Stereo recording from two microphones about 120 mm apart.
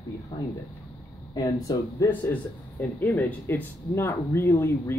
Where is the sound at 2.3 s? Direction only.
15° left (ahead or behind).